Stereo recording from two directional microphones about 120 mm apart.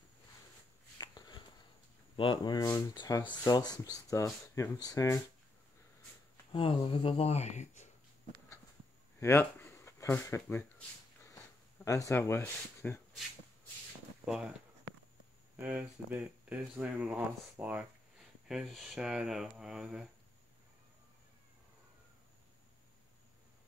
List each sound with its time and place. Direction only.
0.9 s a sound: 35° left (ahead or behind)
2.1 s speech: 40° left (ahead or behind)
6.5 s speech: 45° left (ahead or behind); by 7.9 s 80° left
9.2 s speech: 20° left (ahead or behind)
11.8 s speech: 25° left (ahead or behind)
14.2 s speech: 5° right (ahead or behind)
15.5 s speech: 10° right (ahead or behind)
18.5 s speech: centre (ahead or behind)